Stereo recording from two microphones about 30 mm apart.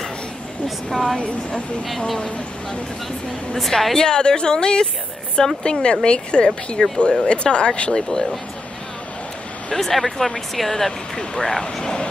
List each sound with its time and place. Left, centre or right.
0.7 s speech: centre
2.1 s speech: left
3.5 s speech: centre
4.1 s a woman's voice: left
7.9 s speech: centre
9.8 s speech: centre
11.6 s speech: left